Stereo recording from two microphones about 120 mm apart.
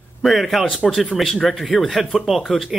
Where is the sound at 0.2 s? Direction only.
Centre (ahead or behind).